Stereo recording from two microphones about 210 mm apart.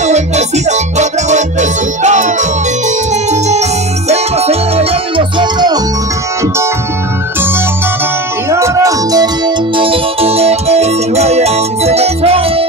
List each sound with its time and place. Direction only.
0.0 s music: 35° right (ahead or behind)
3.3 s keyboard: 30° right (ahead or behind)
4.1 s music: 30° right (ahead or behind)
8.5 s music: 15° right (ahead or behind)
9.8 s music: 25° right (ahead or behind)